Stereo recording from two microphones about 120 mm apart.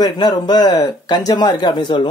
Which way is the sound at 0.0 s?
35° left (ahead or behind).